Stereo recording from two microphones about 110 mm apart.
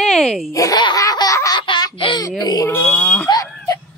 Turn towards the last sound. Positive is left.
turn(degrees=30)  # may be behind; listen again after turning